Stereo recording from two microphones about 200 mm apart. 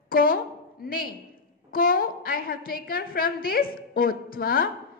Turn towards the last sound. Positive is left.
turn(degrees=45)  # may be behind; listen again after turning